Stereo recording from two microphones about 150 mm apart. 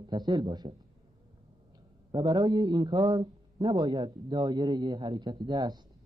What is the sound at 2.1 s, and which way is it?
A man's voice, 25° right (ahead or behind).